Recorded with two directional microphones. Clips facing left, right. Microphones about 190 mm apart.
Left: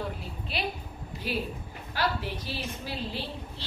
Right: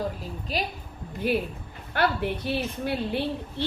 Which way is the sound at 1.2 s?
55° right (ahead or behind).